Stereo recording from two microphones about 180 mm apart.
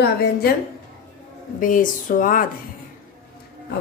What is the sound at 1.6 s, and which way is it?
Speech, 45° left (ahead or behind).